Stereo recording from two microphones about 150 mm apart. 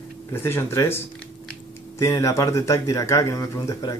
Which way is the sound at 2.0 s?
20° left (ahead or behind).